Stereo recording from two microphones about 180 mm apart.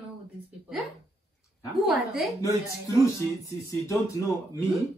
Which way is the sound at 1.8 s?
Centre (ahead or behind).